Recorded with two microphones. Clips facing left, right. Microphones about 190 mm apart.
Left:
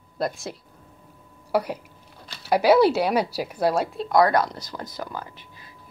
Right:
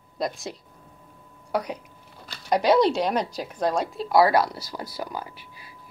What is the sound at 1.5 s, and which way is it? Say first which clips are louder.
A woman's voice: left 3 dB; 5° left (ahead or behind).